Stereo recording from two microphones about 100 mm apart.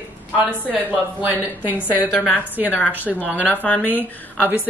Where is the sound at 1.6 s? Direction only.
20° right (ahead or behind).